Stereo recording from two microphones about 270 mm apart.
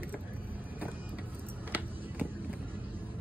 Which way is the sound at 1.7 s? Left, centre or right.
Centre.